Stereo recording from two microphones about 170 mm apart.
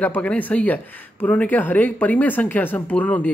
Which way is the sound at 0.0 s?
10° left (ahead or behind).